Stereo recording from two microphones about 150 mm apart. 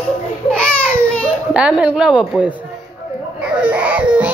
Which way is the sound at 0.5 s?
5° left (ahead or behind).